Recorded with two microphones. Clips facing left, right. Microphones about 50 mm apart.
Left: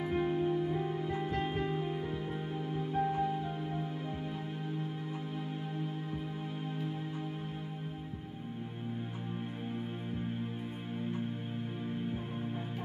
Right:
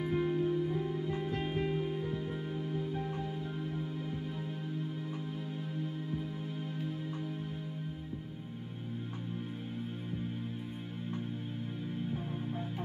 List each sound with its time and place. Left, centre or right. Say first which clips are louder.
0.0 s music: even; centre
1.7 s music: right 1 dB; centre